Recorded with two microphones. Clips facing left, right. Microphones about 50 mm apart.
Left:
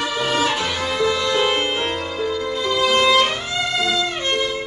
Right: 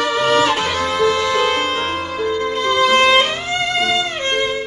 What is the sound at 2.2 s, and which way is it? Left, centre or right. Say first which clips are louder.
Violin: right 4 dB; right.